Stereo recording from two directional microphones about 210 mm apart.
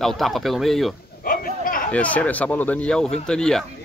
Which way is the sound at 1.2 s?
45° left (ahead or behind).